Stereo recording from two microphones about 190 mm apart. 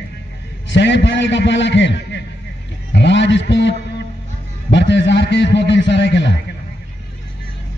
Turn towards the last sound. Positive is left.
turn(degrees=65)  # may be behind; listen again after turning